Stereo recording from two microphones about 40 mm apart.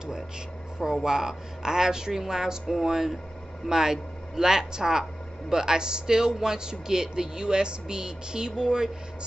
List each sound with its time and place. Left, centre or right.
1.0 s a woman's voice: centre